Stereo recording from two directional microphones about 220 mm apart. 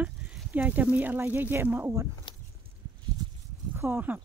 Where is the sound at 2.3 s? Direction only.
20° left (ahead or behind).